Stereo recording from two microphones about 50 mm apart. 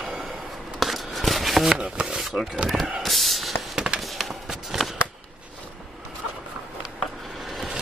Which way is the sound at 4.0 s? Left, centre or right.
Centre.